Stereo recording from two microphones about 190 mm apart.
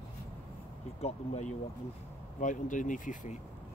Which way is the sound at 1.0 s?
35° left (ahead or behind).